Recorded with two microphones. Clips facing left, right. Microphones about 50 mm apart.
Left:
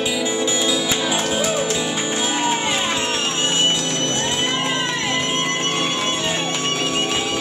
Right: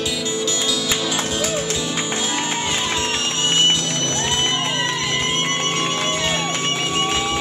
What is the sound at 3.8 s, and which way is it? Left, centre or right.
Music, left.